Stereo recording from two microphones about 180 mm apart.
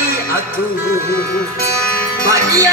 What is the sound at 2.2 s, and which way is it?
Music, 20° right (ahead or behind).